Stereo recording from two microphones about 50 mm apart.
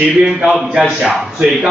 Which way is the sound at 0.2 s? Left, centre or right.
Centre.